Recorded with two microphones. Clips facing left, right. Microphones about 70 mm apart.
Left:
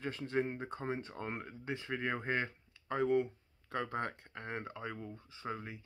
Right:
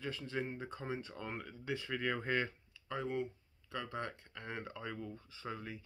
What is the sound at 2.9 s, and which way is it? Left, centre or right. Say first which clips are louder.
Speech: left 7 dB; left.